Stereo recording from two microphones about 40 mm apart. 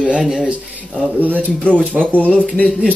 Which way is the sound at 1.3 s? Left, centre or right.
Left.